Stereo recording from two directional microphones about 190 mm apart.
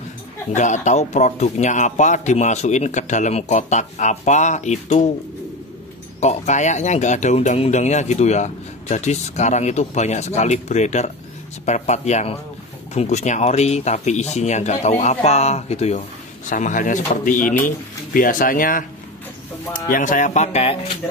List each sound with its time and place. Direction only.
0.5 s speech: 40° left (ahead or behind)
6.2 s speech: 40° left (ahead or behind)